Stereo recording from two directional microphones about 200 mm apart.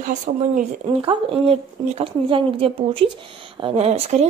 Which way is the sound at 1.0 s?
30° right (ahead or behind).